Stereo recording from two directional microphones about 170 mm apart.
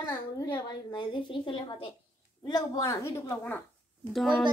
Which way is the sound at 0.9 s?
30° left (ahead or behind).